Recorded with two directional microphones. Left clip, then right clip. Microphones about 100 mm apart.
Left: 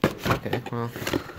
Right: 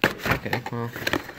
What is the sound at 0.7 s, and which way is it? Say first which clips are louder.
Speech: right 2 dB; 5° right (ahead or behind).